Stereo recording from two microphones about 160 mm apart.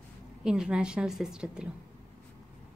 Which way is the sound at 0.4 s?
5° right (ahead or behind).